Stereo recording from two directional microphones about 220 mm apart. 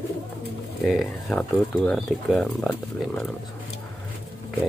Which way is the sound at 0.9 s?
Centre (ahead or behind).